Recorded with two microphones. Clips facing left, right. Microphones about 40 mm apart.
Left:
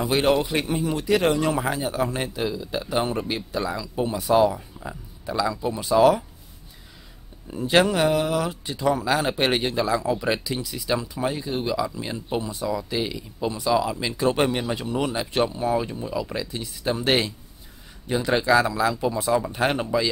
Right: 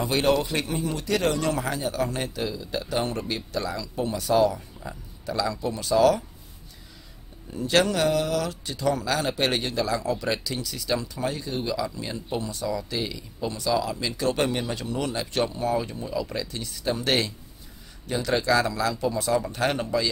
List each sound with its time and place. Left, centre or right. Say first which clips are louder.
0.0 s speech: left 2 dB; centre
7.5 s speech: left 3 dB; centre